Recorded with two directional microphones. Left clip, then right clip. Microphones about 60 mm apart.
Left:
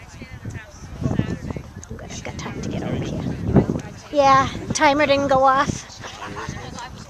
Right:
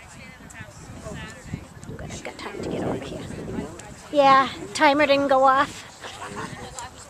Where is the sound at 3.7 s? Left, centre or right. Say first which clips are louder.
Left 1 dB; left.